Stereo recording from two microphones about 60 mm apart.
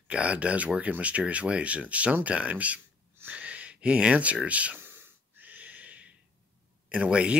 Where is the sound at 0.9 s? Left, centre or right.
Right.